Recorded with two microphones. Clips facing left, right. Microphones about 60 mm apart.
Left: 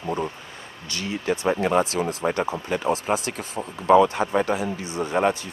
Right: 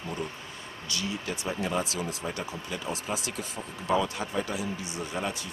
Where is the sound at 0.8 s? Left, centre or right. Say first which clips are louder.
Left 7 dB; left.